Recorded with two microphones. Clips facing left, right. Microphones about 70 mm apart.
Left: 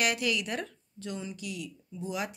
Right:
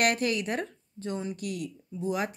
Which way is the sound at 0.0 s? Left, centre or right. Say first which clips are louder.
Right 3 dB; right.